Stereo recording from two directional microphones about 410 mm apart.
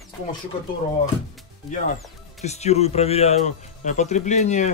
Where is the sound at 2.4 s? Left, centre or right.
Centre.